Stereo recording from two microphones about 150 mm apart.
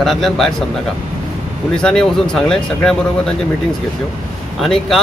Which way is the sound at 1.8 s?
5° left (ahead or behind).